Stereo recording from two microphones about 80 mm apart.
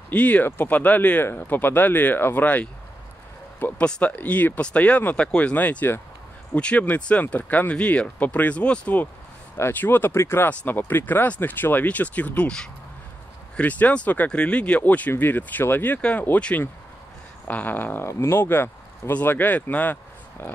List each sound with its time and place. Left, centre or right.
0.1 s speech: centre
3.7 s speech: centre; by 10.5 s left
10.5 s speech: centre